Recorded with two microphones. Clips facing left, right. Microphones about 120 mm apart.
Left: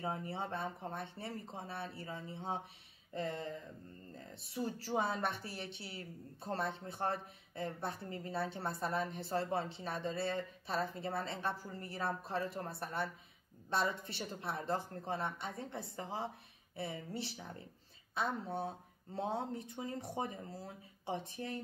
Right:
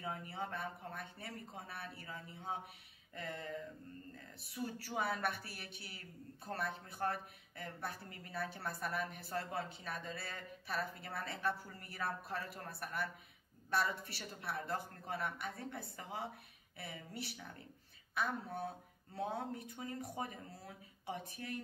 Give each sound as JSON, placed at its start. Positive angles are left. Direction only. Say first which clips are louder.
{"t": 0.0, "sound": "a woman's voice", "louder": "left 3 dB", "side_deg": 30}